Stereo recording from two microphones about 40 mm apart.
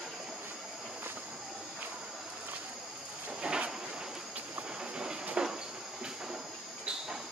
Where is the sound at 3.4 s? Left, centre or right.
Right.